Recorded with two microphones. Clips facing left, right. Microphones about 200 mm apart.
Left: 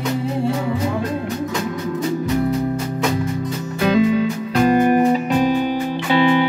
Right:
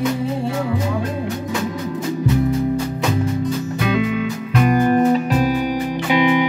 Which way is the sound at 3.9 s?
35° left (ahead or behind).